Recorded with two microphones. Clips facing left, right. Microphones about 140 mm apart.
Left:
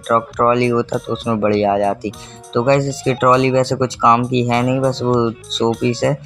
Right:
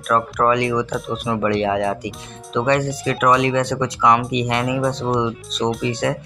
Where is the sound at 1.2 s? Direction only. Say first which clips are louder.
Left 5 dB; 25° left (ahead or behind).